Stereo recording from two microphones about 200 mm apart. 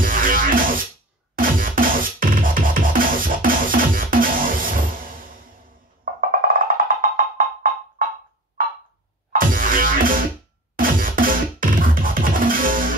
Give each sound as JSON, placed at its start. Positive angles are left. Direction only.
{"t": 0.0, "sound": "music", "side_deg": -45}
{"t": 6.3, "sound": "music", "side_deg": -45}
{"t": 8.6, "sound": "a sound", "side_deg": -45}
{"t": 9.3, "sound": "music", "side_deg": -45}